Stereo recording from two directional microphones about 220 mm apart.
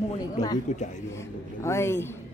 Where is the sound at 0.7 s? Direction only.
30° left (ahead or behind).